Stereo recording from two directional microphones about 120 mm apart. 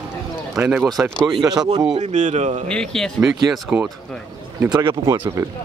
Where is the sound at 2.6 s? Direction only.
5° left (ahead or behind).